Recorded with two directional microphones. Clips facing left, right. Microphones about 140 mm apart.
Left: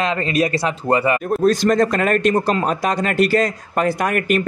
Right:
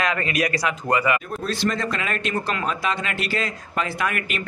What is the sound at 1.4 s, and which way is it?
Speech, 45° left (ahead or behind).